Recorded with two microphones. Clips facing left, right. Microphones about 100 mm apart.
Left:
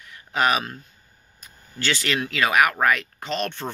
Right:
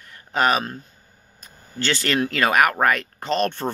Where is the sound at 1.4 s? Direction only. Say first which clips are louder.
Right 2 dB; 35° right (ahead or behind).